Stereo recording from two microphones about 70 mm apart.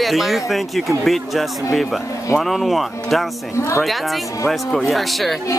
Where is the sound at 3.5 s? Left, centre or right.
Left.